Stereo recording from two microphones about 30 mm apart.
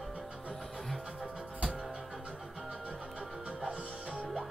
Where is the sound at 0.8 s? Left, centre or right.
Centre.